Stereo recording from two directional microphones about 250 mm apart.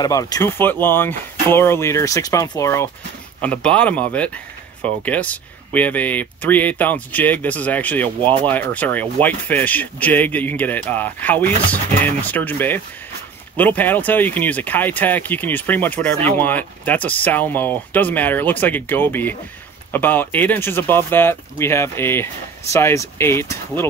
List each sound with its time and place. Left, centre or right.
0.0 s speech: centre